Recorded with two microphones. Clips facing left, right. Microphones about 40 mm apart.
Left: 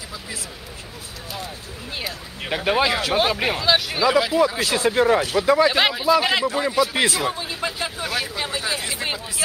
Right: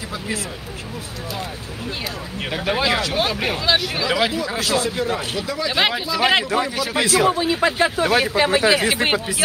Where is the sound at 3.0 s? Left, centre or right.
Centre.